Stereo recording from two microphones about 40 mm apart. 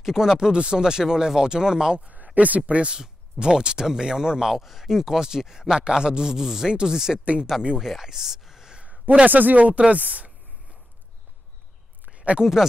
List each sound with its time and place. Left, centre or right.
0.0 s speech: centre
0.5 s speech: right
2.0 s speech: right
2.9 s speech: right
7.5 s speech: centre
8.0 s speech: centre
9.2 s a woman's voice: right
12.1 s a sound: right